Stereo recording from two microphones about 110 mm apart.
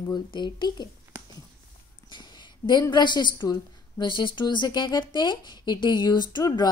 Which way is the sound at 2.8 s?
40° left (ahead or behind).